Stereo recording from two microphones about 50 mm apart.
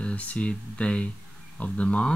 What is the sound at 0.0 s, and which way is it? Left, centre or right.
Speech, left.